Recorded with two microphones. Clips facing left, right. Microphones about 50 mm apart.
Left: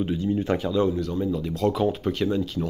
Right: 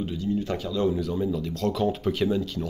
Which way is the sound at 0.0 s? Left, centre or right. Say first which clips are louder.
Left 3 dB; left.